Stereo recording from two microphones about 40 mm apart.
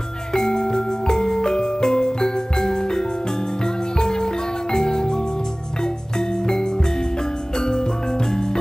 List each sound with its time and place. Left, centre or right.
0.3 s music: centre